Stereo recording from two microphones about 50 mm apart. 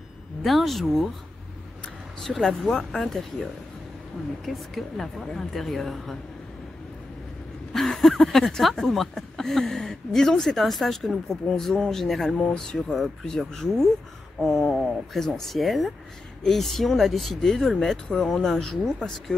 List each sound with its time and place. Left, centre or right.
0.4 s speech: centre
2.1 s speech: centre
4.5 s speech: centre
7.7 s speech: centre